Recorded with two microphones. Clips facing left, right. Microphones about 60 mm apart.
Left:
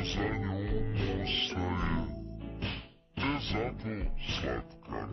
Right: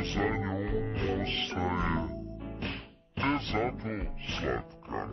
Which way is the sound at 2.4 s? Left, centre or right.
Centre.